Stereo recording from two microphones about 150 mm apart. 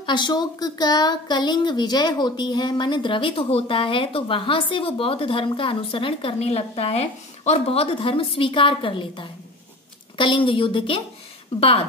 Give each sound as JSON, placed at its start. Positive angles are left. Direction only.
{"t": 0.0, "sound": "speech", "side_deg": 30}